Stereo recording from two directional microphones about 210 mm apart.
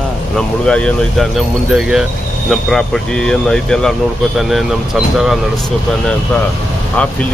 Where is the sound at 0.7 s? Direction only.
5° left (ahead or behind).